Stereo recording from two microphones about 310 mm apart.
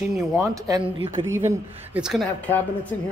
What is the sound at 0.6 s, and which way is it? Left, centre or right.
Speech, centre.